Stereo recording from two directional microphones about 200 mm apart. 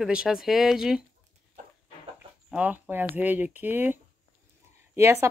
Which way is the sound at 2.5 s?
5° right (ahead or behind).